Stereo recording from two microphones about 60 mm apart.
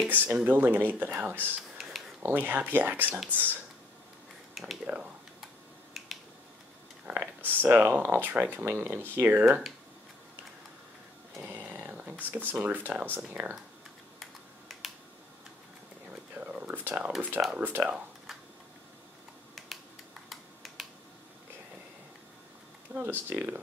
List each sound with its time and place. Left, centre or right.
0.1 s speech: right
4.6 s speech: centre
6.0 s finger snapping: centre
7.1 s speech: right
8.6 s speech: right
9.1 s speech: right
11.3 s a sound: right
12.1 s speech: right
14.2 s computer keyboard: centre
16.5 s a sound: right
17.6 s speech: right
20.2 s a sound: centre
22.9 s speech: right